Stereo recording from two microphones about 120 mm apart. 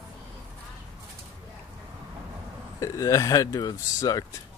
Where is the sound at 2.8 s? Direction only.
25° left (ahead or behind).